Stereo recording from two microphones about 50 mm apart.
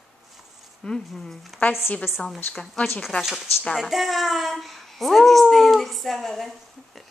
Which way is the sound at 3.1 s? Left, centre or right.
Left.